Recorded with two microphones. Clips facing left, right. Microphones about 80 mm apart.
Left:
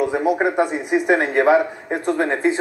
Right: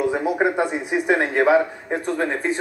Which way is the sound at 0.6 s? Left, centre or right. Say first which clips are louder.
Left 3 dB; centre.